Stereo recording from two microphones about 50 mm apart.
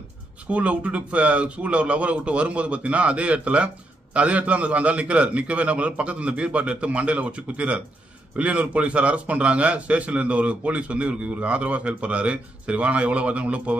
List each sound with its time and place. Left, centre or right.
0.5 s a man's voice: right